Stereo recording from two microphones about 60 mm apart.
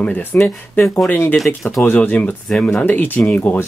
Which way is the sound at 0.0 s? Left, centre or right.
Left.